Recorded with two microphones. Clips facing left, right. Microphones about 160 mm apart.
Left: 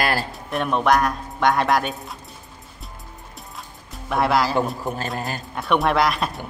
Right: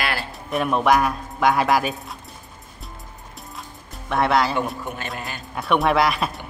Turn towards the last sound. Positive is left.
turn(degrees=0)  # may be behind; listen again after turning